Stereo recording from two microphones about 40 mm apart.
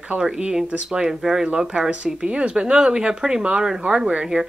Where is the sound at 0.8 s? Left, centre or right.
Centre.